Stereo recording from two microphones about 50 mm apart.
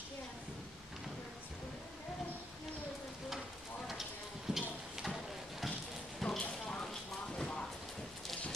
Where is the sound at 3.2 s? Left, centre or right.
Centre.